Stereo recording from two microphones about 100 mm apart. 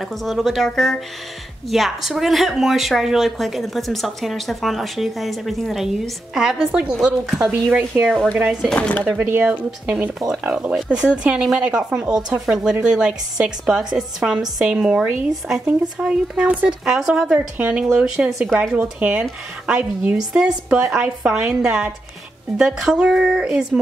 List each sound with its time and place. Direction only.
0.0 s speech: centre (ahead or behind)
7.9 s a woman's voice: 15° right (ahead or behind)
8.6 s speech: 15° left (ahead or behind)
9.3 s a woman's voice: 15° right (ahead or behind)